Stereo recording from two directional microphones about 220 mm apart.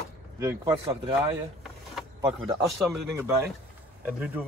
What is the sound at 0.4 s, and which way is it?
Speech, 15° right (ahead or behind).